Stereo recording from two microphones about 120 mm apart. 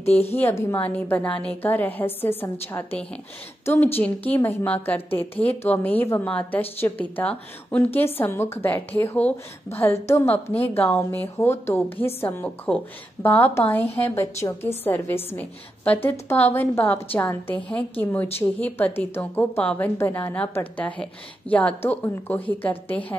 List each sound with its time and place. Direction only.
0.1 s a woman's voice: 60° left (ahead or behind)
0.4 s a woman's voice: 20° left (ahead or behind)
3.6 s a woman's voice: 15° left (ahead or behind)